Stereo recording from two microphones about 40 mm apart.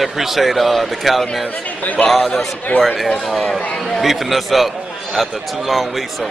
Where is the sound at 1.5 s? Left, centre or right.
Left.